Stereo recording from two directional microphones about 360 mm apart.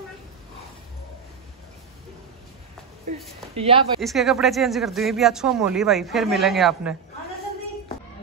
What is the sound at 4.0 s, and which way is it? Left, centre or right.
Speech, centre.